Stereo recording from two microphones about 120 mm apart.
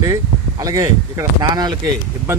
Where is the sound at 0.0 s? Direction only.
30° right (ahead or behind).